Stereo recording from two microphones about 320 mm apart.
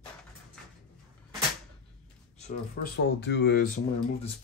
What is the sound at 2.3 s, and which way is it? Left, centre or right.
Speech, left.